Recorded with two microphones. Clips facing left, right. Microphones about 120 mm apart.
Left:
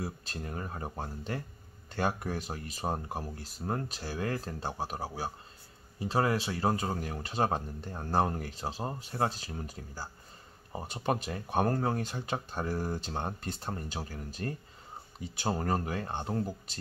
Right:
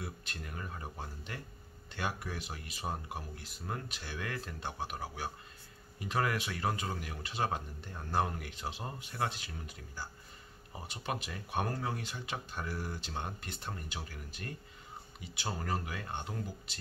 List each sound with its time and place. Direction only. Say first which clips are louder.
0.0 s speech: left 6 dB; 35° left (ahead or behind)